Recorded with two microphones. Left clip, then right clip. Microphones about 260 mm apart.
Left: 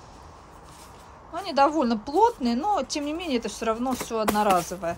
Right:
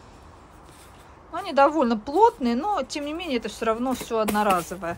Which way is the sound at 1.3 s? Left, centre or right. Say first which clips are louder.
Right 2 dB; centre.